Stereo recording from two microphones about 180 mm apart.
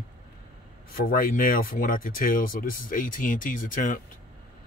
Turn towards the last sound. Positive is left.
turn(degrees=50)  # may be behind; listen again after turning